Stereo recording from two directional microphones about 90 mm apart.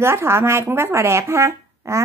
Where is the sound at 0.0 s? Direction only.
30° right (ahead or behind).